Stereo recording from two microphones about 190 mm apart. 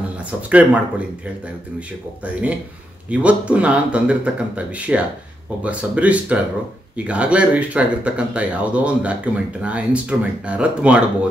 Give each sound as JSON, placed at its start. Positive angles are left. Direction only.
{"t": 0.2, "sound": "speech", "side_deg": -5}
{"t": 3.1, "sound": "speech", "side_deg": -5}